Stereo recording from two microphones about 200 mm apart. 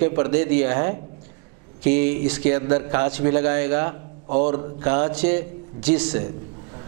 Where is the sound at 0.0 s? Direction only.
15° right (ahead or behind).